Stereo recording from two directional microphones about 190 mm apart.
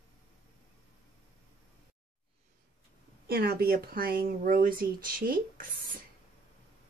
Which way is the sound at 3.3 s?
55° right (ahead or behind).